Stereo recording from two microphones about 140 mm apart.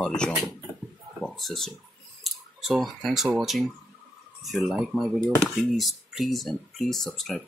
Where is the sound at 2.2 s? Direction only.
Centre (ahead or behind).